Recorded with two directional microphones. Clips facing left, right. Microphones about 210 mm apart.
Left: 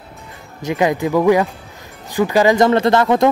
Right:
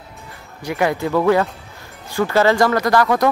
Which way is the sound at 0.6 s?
20° left (ahead or behind).